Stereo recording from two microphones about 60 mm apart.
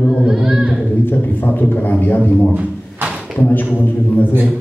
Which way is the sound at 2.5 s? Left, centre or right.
Right.